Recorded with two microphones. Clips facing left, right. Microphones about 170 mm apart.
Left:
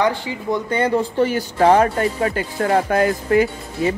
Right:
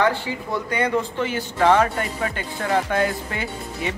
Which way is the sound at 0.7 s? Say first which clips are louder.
Left 3 dB; 30° left (ahead or behind).